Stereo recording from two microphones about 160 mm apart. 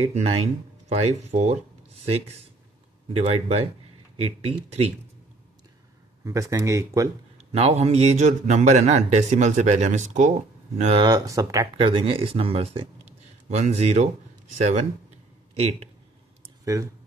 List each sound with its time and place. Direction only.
0.0 s speech: 40° right (ahead or behind)
6.2 s speech: 20° right (ahead or behind)
7.3 s speech: 40° right (ahead or behind)
10.8 s speech: 35° right (ahead or behind)
11.8 s speech: 35° right (ahead or behind)
15.5 s speech: 40° right (ahead or behind)
16.6 s speech: 20° right (ahead or behind)